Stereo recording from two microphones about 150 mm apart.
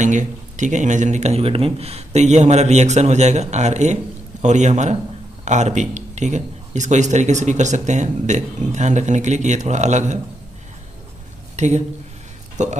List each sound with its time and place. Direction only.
0.0 s speech: 55° right (ahead or behind)
11.5 s a sound: 50° right (ahead or behind)
12.6 s speech: 50° right (ahead or behind)